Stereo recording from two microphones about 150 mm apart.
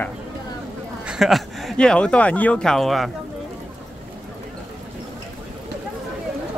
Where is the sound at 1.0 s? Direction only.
5° right (ahead or behind).